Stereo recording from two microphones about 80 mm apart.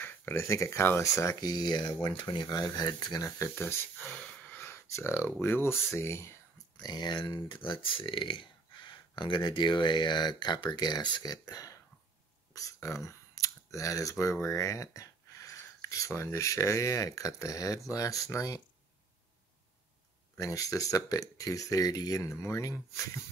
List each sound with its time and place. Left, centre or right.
0.0 s speech: left
1.4 s speech: left
3.3 s speech: left
6.8 s speech: left
7.4 s speech: left
11.4 s speech: left
12.5 s a sound: left
14.4 s speech: left
20.3 s speech: left